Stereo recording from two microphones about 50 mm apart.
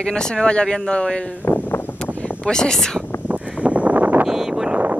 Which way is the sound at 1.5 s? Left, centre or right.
Left.